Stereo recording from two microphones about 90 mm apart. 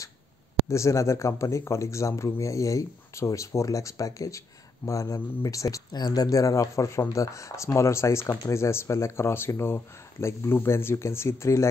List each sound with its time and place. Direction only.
0.7 s speech: 35° left (ahead or behind)
5.9 s speech: 50° left (ahead or behind); by 11.7 s 35° left (ahead or behind)